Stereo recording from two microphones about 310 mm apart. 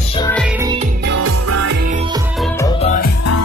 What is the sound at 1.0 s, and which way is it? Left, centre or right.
Music, right.